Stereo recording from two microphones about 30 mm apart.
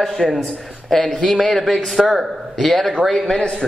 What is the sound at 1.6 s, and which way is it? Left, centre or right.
Speech, centre.